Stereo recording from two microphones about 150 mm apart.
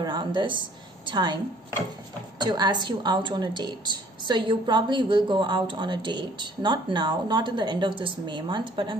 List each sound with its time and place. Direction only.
0.0 s a woman's voice: 30° right (ahead or behind)